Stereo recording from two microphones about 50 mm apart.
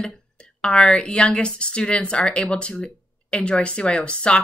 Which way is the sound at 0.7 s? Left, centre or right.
Centre.